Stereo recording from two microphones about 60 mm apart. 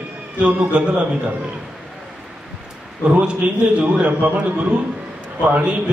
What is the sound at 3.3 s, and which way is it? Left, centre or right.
A man's voice, right.